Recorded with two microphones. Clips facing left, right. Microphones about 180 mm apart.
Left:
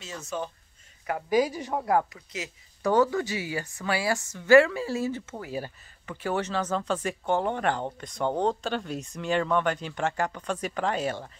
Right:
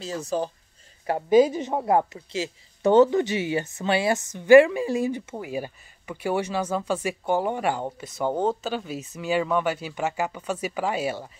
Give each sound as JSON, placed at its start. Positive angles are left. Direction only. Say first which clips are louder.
{"t": 0.0, "sound": "a woman's voice", "louder": "right 7 dB", "side_deg": -35}